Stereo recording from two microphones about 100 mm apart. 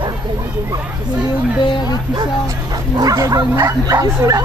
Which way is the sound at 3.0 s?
35° right (ahead or behind).